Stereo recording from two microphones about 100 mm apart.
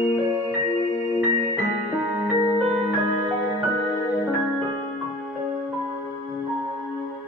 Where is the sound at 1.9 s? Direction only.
20° right (ahead or behind).